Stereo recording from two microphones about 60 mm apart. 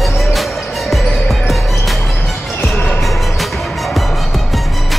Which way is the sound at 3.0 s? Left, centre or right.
Centre.